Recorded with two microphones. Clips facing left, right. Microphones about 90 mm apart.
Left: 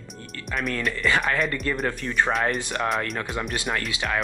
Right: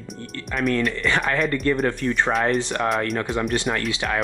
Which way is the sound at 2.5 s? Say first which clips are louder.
Right 5 dB; 10° left (ahead or behind).